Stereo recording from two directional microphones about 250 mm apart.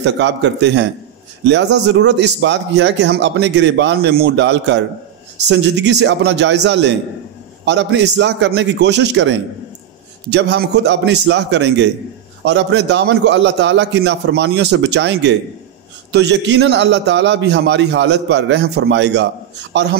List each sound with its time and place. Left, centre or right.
0.0 s speech: right